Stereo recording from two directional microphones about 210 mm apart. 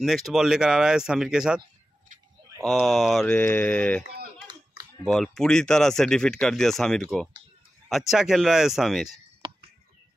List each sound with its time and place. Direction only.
0.0 s speech: centre (ahead or behind)
2.9 s speech: centre (ahead or behind)
5.0 s speech: centre (ahead or behind)
9.4 s a sound: 25° right (ahead or behind)